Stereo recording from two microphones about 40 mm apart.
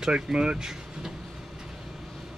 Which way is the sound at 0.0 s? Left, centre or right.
Right.